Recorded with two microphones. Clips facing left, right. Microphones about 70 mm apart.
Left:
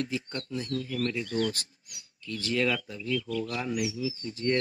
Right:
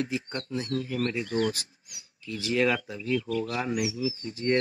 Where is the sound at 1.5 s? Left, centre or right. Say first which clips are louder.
Right 2 dB; centre.